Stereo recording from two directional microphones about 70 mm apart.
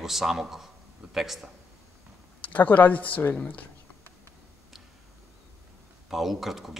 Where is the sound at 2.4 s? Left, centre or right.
Left.